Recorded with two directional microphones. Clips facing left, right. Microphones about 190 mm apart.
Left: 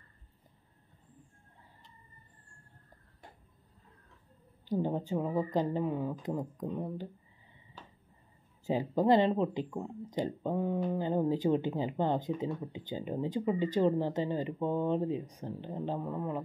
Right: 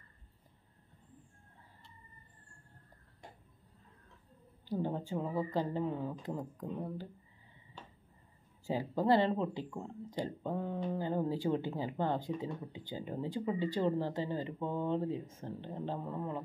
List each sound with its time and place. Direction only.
4.6 s speech: 15° left (ahead or behind)
7.7 s a sound: centre (ahead or behind)
8.6 s speech: 20° left (ahead or behind)